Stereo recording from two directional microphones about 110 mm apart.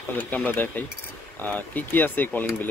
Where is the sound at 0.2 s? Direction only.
15° left (ahead or behind).